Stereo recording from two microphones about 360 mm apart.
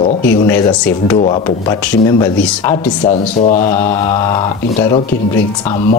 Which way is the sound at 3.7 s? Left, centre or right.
Centre.